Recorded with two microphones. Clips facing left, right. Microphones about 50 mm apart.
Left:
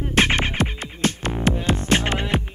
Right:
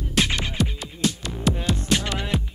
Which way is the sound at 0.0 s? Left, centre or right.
Left.